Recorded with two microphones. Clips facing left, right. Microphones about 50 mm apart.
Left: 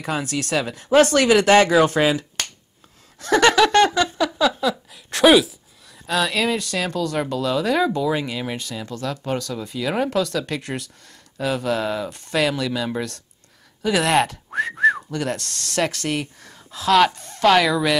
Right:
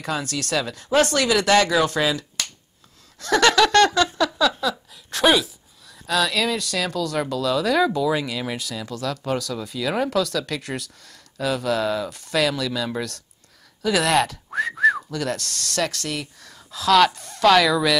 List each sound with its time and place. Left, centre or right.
0.0 s speech: centre
1.1 s speech: left
3.2 s giggle: centre
5.1 s speech: centre
14.7 s whistling: centre
15.0 s speech: centre
15.8 s speech: left
16.5 s speech: centre